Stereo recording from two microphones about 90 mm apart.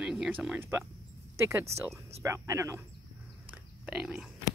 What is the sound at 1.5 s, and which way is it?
Speech, 30° right (ahead or behind).